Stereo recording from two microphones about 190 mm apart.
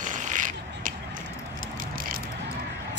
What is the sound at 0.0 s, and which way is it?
Mechanisms, 40° right (ahead or behind).